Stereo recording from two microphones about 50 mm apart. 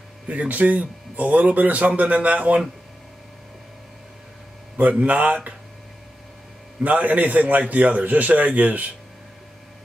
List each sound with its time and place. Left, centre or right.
0.3 s speech: right
4.7 s speech: right
6.8 s speech: right